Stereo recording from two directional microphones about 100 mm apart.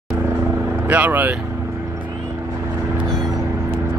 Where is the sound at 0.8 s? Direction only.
15° right (ahead or behind).